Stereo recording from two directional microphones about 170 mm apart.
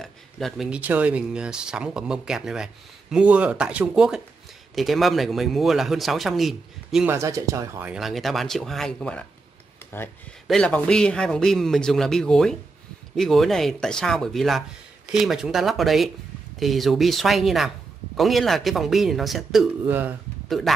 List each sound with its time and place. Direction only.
0.0 s speech: centre (ahead or behind)
7.1 s speech: 15° right (ahead or behind)
7.9 s speech: centre (ahead or behind)
20.4 s speech: centre (ahead or behind)